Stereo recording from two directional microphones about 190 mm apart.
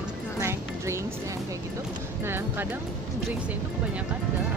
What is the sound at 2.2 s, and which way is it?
Speech, 10° right (ahead or behind).